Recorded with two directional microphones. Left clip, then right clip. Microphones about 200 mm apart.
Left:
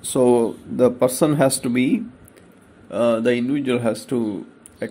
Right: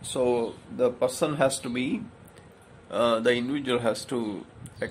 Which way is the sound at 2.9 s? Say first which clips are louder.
Left 4 dB; centre (ahead or behind).